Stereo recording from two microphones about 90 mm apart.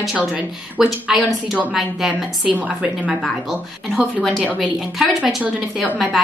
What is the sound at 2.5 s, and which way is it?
Speech, 15° right (ahead or behind).